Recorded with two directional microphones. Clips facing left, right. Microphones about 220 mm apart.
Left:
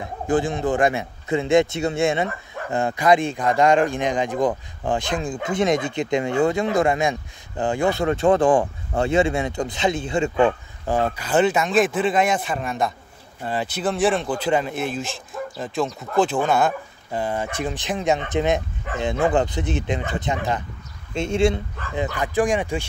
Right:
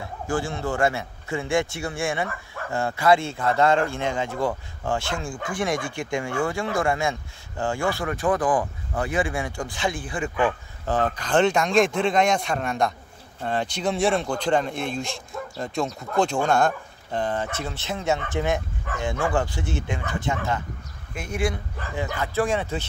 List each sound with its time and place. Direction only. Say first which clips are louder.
0.0 s speech: left 6 dB; 20° left (ahead or behind)
10.9 s speech: left 2 dB; 10° left (ahead or behind)